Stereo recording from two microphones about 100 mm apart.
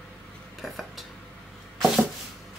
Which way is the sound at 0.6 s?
Centre (ahead or behind).